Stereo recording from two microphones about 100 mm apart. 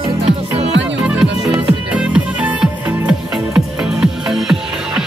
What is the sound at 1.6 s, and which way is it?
Music, 10° right (ahead or behind).